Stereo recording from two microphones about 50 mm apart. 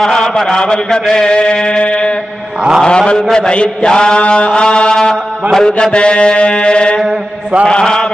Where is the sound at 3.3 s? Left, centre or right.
Centre.